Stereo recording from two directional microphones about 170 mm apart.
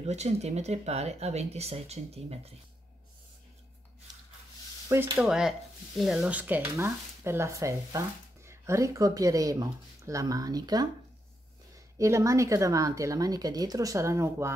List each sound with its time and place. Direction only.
0.0 s speech: 40° right (ahead or behind)
4.8 s speech: 15° right (ahead or behind)